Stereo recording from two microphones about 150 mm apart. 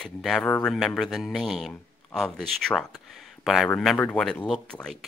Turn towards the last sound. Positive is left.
turn(degrees=5)  # may be behind; listen again after turning